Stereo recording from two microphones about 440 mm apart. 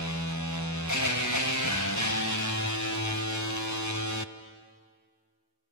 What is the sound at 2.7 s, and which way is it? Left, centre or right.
Music, left.